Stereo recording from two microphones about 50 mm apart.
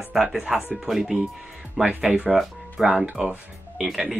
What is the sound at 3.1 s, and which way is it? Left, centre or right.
Speech, right.